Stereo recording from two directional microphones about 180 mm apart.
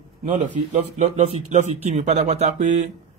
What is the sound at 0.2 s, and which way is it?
A man's voice, 40° right (ahead or behind).